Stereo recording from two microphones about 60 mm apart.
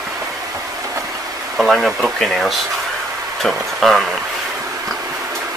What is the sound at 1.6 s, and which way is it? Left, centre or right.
Speech, centre.